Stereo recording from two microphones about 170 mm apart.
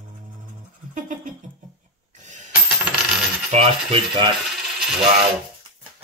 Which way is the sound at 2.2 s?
45° right (ahead or behind).